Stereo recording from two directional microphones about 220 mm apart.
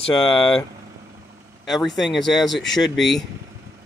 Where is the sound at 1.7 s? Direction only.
Centre (ahead or behind).